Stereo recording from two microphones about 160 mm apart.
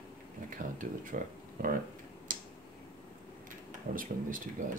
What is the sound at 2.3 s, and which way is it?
Tick-tock, 55° right (ahead or behind).